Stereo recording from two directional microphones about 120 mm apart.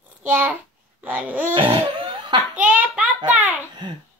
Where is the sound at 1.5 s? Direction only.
45° right (ahead or behind).